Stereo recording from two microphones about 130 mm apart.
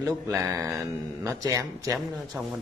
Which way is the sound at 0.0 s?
25° right (ahead or behind).